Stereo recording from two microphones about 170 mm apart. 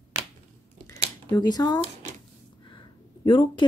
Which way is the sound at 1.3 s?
25° left (ahead or behind).